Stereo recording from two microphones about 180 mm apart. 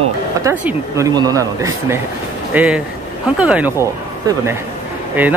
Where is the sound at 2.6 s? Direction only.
5° right (ahead or behind).